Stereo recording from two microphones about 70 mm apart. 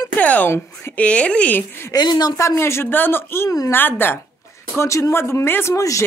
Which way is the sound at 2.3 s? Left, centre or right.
Left.